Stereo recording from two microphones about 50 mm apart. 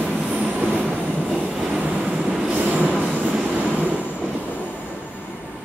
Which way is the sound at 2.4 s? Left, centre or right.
Right.